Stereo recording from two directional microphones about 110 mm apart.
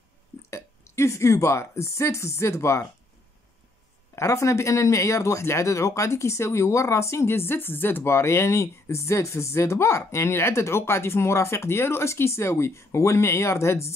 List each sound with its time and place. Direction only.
0.5 s speech: 25° left (ahead or behind)
4.1 s speech: 25° left (ahead or behind)